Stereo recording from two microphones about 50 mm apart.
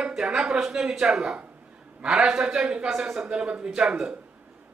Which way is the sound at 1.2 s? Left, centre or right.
Right.